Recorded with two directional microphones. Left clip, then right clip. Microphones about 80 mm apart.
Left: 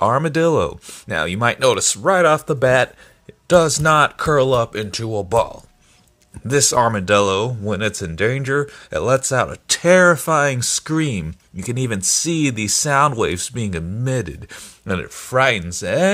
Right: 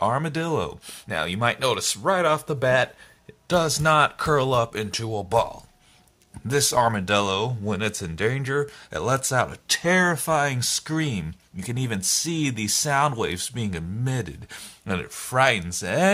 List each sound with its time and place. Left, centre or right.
0.0 s speech: left
1.0 s speech: left; by 9.5 s centre
9.7 s speech: left; by 16.0 s centre